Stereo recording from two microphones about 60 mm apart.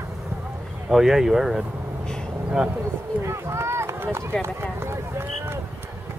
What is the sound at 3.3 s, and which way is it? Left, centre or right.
Run, right.